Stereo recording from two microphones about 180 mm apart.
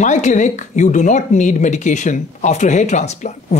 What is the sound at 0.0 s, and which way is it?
Speech, 40° left (ahead or behind).